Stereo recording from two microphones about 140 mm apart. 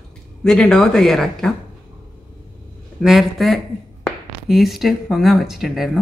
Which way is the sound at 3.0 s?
Centre (ahead or behind).